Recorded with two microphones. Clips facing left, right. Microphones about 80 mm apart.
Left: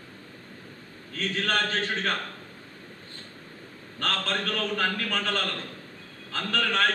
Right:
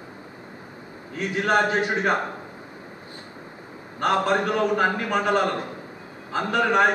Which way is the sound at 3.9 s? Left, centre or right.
Centre.